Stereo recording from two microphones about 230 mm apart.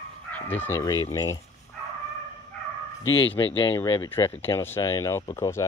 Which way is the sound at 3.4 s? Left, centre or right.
Centre.